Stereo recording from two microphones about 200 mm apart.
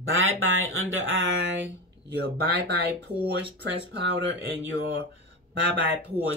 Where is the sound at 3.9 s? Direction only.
60° right (ahead or behind).